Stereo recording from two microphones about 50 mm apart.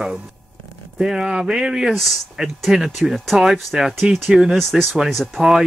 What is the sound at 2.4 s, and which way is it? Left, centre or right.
Speech, centre.